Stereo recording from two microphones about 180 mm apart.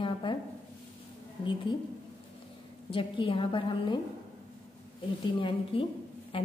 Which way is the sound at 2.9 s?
30° left (ahead or behind).